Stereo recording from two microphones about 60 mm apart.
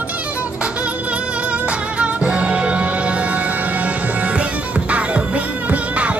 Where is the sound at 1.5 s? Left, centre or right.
Right.